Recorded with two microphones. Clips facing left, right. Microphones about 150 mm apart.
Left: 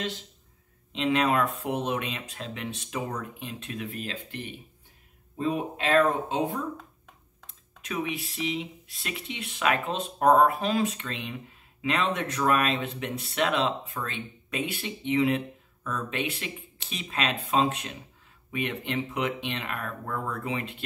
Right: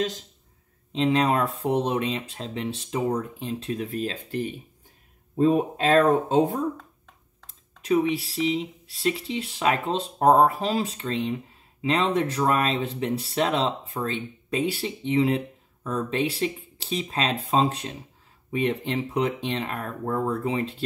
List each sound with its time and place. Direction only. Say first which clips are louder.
0.9 s speech: right 3 dB; 35° right (ahead or behind)
7.4 s speech: right 12 dB; 30° right (ahead or behind)